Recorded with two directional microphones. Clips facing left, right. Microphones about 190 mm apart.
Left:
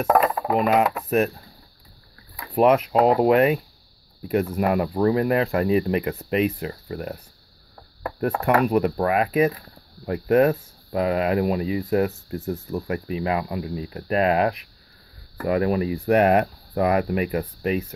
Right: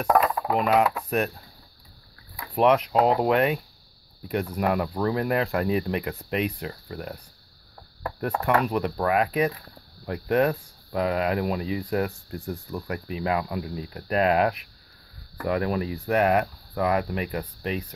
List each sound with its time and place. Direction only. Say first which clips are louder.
0.7 s speech: left 3 dB; 5° left (ahead or behind)
2.3 s speech: left 3 dB; 5° left (ahead or behind)
16.1 s speech: left 4 dB; 20° left (ahead or behind)